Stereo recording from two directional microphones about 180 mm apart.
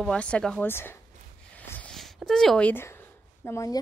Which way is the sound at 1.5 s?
10° left (ahead or behind).